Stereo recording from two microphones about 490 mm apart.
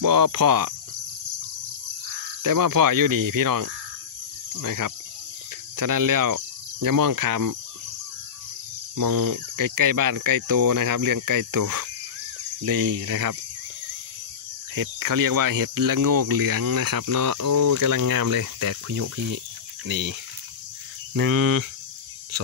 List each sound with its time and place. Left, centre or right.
0.0 s speech: right
2.4 s speech: right
8.9 s speech: right
14.8 s speech: right